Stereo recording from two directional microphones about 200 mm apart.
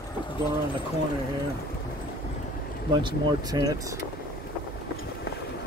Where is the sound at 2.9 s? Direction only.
20° right (ahead or behind).